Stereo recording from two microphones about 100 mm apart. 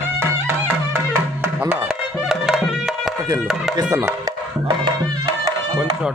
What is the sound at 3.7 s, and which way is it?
Speech, 35° right (ahead or behind).